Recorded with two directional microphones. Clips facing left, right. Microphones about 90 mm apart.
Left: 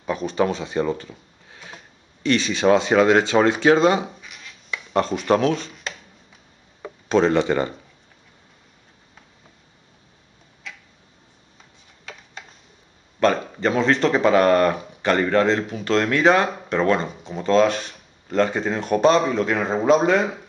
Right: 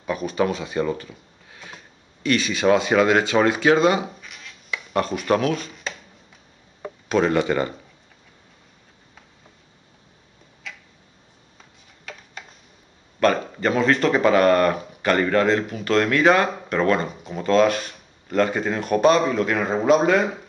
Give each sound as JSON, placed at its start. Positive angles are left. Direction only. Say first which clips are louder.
{"t": 0.3, "sound": "speech", "louder": "left 1 dB", "side_deg": 25}
{"t": 2.2, "sound": "speech", "louder": "left 1 dB", "side_deg": 25}
{"t": 4.0, "sound": "a sound", "louder": "even", "side_deg": 0}
{"t": 7.1, "sound": "speech", "louder": "left 2 dB", "side_deg": 25}
{"t": 10.6, "sound": "tick-tock", "louder": "even", "side_deg": 0}
{"t": 13.7, "sound": "speech", "louder": "even", "side_deg": -5}